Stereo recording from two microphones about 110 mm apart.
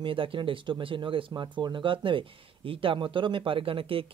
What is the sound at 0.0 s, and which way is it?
Speech, 50° right (ahead or behind).